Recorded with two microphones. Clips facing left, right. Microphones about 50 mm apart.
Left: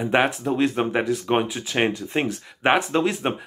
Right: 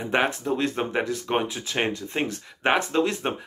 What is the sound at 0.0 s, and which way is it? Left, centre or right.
Speech, centre.